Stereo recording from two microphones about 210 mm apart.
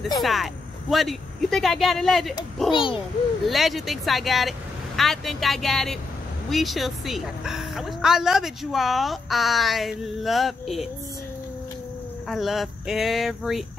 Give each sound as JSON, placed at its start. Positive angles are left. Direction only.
{"t": 0.2, "sound": "a woman's voice", "side_deg": 0}
{"t": 2.7, "sound": "a child's voice", "side_deg": 25}
{"t": 3.4, "sound": "a woman's voice", "side_deg": 0}
{"t": 12.3, "sound": "a woman's voice", "side_deg": 0}